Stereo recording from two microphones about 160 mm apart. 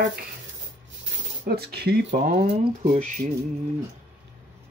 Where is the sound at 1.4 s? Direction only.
75° right (ahead or behind).